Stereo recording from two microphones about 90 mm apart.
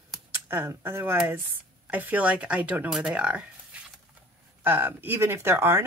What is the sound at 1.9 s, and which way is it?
Speech, 20° right (ahead or behind).